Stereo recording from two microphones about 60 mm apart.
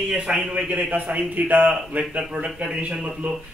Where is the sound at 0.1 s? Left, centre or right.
Centre; by 1.7 s right.